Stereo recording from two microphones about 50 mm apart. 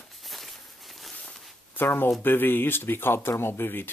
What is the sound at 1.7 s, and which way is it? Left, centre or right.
Speech, left.